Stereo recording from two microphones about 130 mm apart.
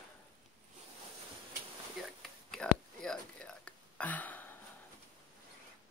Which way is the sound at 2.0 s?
5° left (ahead or behind).